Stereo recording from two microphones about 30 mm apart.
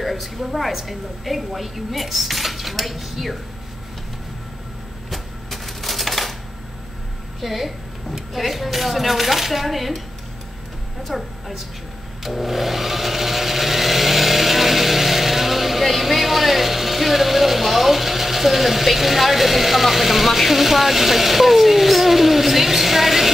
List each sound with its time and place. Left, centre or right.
0.0 s a woman's voice: centre
5.1 s typewriter: centre
7.4 s speech: centre
11.1 s speech: centre
12.2 s a sound: centre